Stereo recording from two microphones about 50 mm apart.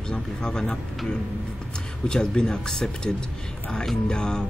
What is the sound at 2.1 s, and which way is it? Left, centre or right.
Speech, centre.